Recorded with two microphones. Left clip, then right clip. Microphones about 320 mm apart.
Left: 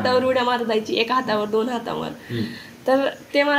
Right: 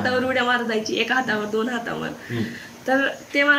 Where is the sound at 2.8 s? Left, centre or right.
Centre.